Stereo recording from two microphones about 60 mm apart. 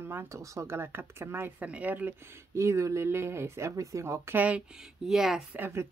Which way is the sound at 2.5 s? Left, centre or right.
Right.